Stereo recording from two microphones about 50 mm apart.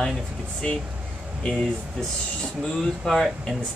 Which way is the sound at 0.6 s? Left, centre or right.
Centre.